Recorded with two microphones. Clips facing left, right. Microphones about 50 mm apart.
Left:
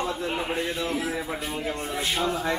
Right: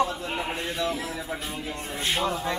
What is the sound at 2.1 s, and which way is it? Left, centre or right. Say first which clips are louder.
Speech: right 1 dB; centre.